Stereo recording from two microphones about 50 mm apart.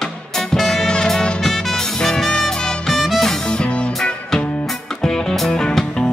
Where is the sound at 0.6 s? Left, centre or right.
Centre.